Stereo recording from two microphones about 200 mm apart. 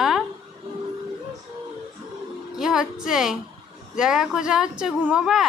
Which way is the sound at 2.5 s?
5° right (ahead or behind).